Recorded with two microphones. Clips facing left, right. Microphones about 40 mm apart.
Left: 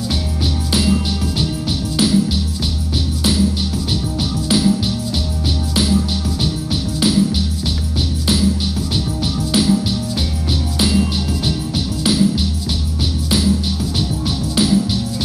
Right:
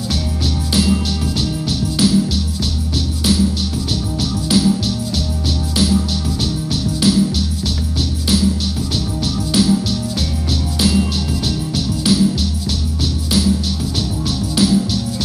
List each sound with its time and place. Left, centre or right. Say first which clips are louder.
0.1 s music: even; centre
3.2 s music: right 1 dB; centre
8.3 s music: right 1 dB; centre
9.4 s music: even; left
10.8 s music: even; centre
13.3 s music: even; centre